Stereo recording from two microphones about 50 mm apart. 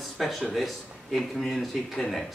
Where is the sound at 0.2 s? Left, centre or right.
Centre.